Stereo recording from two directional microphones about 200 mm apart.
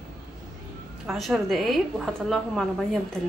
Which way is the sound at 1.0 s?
Centre (ahead or behind).